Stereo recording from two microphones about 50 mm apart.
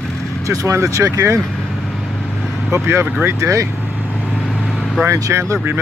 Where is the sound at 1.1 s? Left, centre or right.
Right.